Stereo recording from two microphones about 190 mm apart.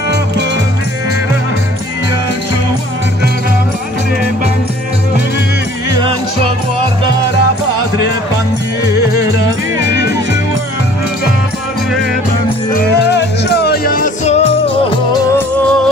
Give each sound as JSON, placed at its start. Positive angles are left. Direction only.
{"t": 12.7, "sound": "music", "side_deg": 60}
{"t": 15.1, "sound": "music", "side_deg": 10}